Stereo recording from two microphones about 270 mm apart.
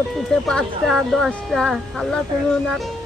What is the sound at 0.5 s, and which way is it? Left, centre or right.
A woman's voice, centre.